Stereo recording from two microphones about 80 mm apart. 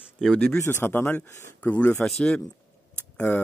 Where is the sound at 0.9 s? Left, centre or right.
Left.